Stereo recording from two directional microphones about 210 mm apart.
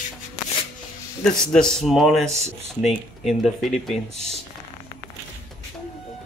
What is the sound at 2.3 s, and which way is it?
Speech, 30° right (ahead or behind).